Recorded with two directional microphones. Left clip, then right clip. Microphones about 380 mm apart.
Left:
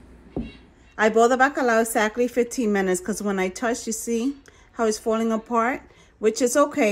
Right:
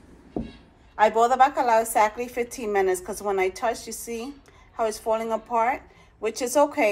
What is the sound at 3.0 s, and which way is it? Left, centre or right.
A woman's voice, centre.